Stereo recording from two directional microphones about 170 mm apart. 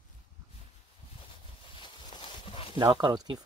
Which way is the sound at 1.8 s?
30° left (ahead or behind).